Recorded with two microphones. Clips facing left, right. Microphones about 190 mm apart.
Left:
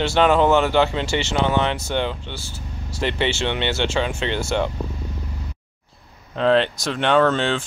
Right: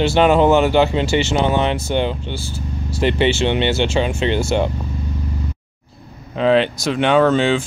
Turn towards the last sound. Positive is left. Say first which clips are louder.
# right 4 dB
turn(degrees=-5)  # may be behind; listen again after turning